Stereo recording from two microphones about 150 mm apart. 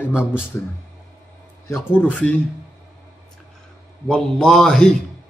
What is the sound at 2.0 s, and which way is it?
Speech, 10° left (ahead or behind).